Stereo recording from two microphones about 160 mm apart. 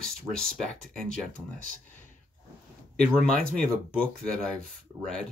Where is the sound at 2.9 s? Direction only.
5° left (ahead or behind).